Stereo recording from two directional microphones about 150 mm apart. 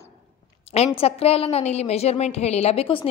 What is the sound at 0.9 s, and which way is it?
A woman's voice, 40° left (ahead or behind).